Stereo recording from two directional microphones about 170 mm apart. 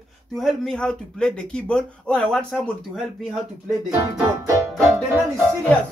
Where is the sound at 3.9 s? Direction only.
15° right (ahead or behind).